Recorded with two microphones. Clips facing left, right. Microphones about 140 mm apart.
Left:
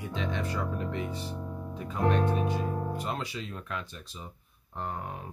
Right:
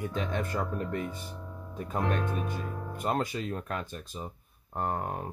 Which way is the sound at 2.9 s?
50° right (ahead or behind).